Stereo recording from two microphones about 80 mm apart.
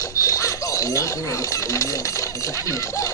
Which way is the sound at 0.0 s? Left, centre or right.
Left.